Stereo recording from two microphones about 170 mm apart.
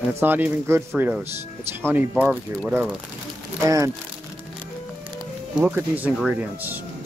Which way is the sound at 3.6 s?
20° right (ahead or behind).